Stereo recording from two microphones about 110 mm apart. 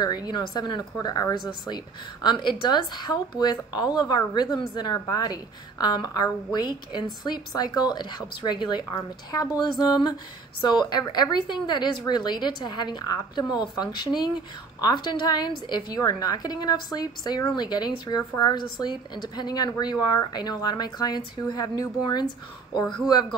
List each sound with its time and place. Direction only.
0.0 s a woman's voice: 40° left (ahead or behind)